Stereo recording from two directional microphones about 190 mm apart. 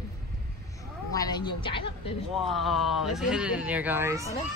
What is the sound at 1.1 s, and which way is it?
Speech, 20° left (ahead or behind).